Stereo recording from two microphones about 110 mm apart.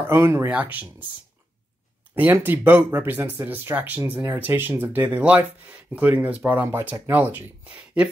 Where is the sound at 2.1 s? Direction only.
15° right (ahead or behind).